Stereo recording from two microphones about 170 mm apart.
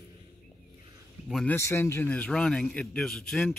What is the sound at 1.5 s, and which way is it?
A man's voice, 15° left (ahead or behind).